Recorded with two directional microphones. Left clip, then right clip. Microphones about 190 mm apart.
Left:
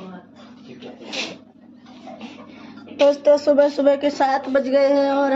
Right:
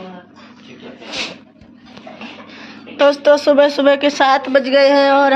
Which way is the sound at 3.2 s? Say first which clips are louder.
Right 6 dB; 5° right (ahead or behind).